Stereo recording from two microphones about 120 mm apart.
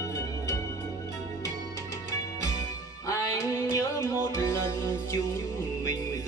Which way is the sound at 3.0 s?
30° left (ahead or behind).